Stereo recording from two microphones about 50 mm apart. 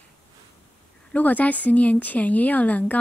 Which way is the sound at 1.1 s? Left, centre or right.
Left.